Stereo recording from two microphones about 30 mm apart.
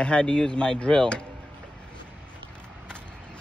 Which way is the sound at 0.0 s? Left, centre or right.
Left.